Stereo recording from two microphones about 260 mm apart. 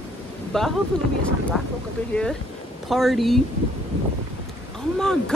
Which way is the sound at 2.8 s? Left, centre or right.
Centre.